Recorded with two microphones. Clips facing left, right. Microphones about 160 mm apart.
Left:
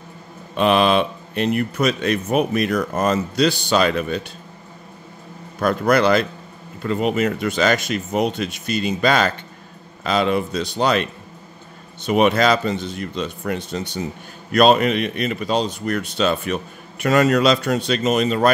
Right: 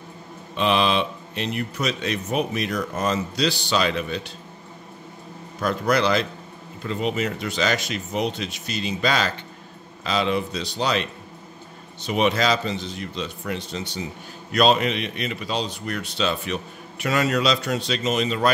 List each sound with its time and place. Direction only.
0.6 s a man's voice: 50° left (ahead or behind)
5.6 s a man's voice: 55° left (ahead or behind)